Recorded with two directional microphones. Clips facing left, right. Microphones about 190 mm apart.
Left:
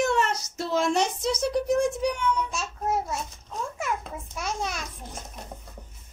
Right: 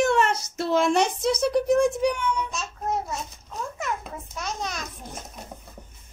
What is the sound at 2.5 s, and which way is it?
Babbling, 5° left (ahead or behind).